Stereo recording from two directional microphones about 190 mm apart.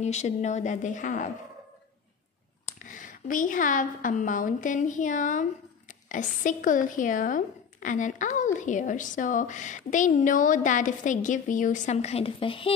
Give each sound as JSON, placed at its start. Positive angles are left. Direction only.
{"t": 0.0, "sound": "a woman's voice", "side_deg": 35}
{"t": 2.6, "sound": "a woman's voice", "side_deg": 45}